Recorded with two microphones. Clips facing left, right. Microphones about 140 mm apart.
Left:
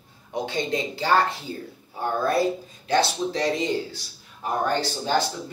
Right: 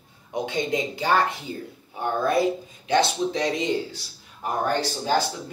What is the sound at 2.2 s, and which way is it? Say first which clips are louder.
Speech: right 1 dB; 20° right (ahead or behind).